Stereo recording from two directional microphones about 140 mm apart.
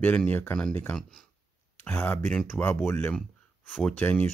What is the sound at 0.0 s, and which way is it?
Speech, 10° left (ahead or behind).